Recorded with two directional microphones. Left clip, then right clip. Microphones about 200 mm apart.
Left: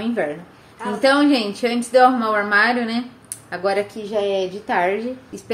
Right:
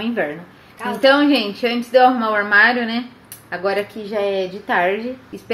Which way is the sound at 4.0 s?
10° right (ahead or behind).